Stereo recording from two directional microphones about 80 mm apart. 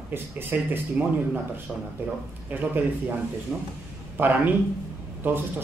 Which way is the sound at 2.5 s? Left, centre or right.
Right.